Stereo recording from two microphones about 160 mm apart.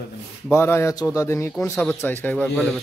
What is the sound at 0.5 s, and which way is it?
A man's voice, 15° left (ahead or behind).